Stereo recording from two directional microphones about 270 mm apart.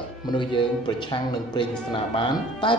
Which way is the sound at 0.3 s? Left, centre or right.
Centre.